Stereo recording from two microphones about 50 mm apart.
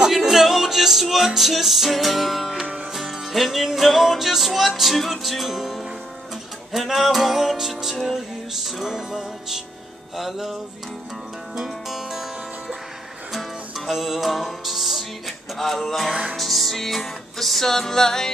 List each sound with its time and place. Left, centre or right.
0.1 s music: centre
2.6 s music: right
2.9 s music: centre
13.3 s music: centre